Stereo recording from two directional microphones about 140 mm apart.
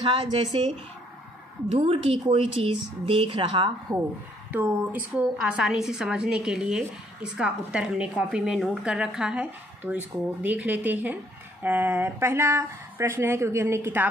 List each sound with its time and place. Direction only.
0.0 s speech: 35° right (ahead or behind)
1.8 s speech: 40° right (ahead or behind)
4.5 s a woman's voice: 10° right (ahead or behind)